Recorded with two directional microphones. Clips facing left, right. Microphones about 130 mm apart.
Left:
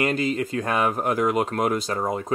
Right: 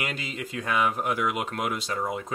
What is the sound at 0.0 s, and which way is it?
Speech, 45° left (ahead or behind).